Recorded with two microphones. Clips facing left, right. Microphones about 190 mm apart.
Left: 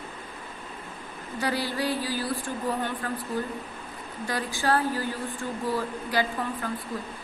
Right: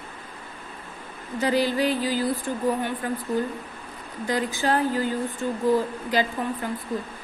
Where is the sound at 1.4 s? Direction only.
20° right (ahead or behind).